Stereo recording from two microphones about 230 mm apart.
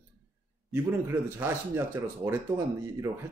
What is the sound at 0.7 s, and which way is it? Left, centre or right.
Speech, centre.